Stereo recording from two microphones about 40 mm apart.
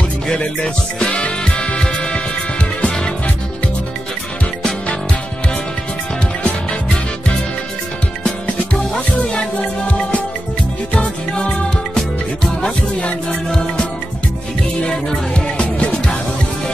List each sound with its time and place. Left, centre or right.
1.6 s music: left
12.6 s music: left
15.3 s music: left